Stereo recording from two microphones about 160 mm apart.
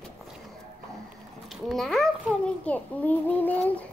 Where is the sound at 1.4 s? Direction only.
Centre (ahead or behind).